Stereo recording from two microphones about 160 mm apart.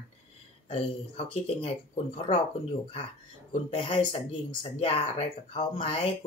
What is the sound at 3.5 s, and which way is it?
Speech, 35° left (ahead or behind).